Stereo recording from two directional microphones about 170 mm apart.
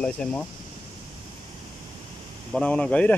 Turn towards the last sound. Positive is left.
turn(degrees=5)  # may be behind; listen again after turning